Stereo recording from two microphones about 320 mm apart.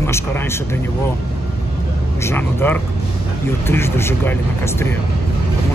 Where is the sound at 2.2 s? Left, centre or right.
Centre.